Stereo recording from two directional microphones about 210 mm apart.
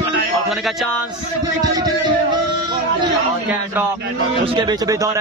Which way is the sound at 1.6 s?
20° right (ahead or behind).